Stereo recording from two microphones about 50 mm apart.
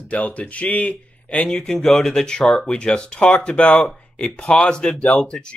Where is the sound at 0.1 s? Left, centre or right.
Left.